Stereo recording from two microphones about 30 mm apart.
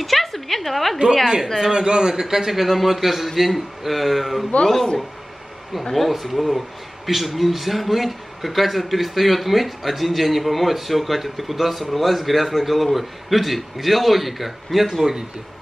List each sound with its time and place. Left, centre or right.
0.0 s a sound: centre
1.2 s a man's voice: centre
1.7 s a man's voice: right
2.2 s a man's voice: centre
5.9 s a man's voice: centre